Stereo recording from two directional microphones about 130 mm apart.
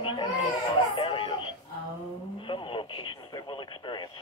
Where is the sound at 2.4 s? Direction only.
40° left (ahead or behind).